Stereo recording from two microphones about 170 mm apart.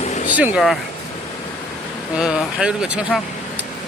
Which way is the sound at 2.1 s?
5° right (ahead or behind).